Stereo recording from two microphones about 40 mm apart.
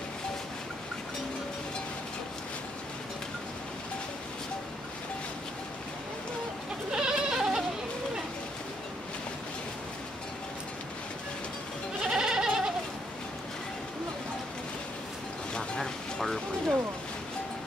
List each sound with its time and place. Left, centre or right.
6.9 s goat: right
12.0 s goat: centre
15.8 s a sound: centre